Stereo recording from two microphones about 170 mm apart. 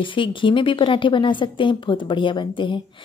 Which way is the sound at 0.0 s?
30° left (ahead or behind).